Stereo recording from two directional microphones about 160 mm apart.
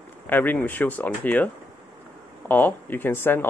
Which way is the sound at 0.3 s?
10° left (ahead or behind).